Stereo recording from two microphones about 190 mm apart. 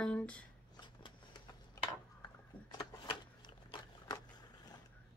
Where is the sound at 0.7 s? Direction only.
25° left (ahead or behind).